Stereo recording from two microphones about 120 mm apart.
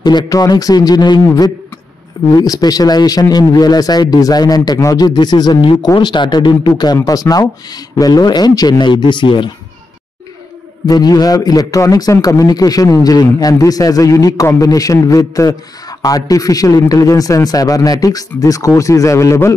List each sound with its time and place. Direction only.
0.0 s a man's voice: 35° left (ahead or behind)
10.9 s a man's voice: 35° left (ahead or behind)